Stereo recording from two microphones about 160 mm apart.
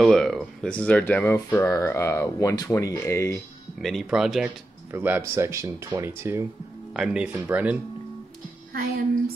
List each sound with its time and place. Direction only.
0.0 s speech: centre (ahead or behind); by 3.4 s 15° left (ahead or behind)
3.8 s speech: centre (ahead or behind)